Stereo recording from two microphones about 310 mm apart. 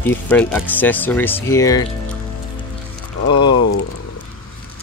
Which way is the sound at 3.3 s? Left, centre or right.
Centre.